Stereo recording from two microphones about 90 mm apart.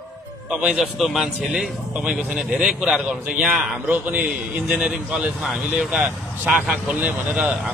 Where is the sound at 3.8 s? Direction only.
20° right (ahead or behind).